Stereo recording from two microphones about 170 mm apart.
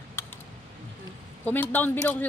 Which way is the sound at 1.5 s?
10° left (ahead or behind).